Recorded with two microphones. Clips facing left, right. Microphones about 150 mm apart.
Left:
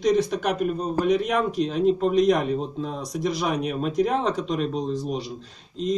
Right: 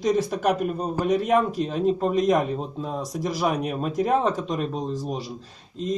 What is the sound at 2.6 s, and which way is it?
Speech, 5° right (ahead or behind).